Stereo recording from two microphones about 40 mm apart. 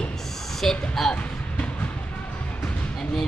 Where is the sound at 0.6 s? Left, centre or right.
Centre.